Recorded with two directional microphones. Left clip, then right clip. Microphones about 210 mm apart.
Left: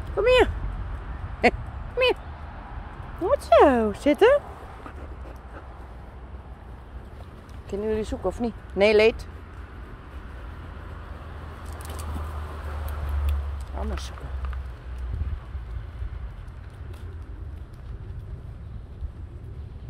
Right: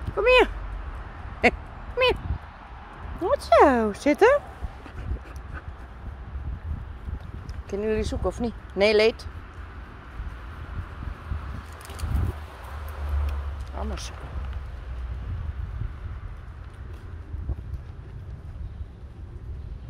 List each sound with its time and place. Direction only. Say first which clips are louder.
0.2 s speech: right 1 dB; 5° right (ahead or behind)
2.0 s a sound: even; 10° right (ahead or behind)
3.3 s speech: left 1 dB; 5° right (ahead or behind)
7.7 s speech: right 1 dB; 10° right (ahead or behind)
13.7 s speech: even; centre (ahead or behind)